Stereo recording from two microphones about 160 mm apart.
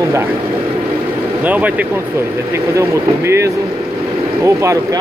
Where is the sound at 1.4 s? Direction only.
10° right (ahead or behind).